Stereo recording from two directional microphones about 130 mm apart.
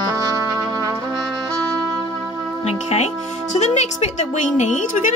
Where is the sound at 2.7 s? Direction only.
60° left (ahead or behind).